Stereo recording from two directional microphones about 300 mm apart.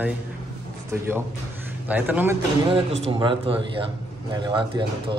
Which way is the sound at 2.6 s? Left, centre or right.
Centre.